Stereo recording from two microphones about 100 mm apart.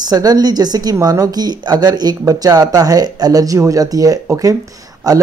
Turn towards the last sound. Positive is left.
turn(degrees=-35)  # may be behind; listen again after turning